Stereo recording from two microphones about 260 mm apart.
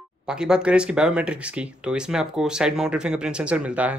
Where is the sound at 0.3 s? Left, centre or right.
Centre.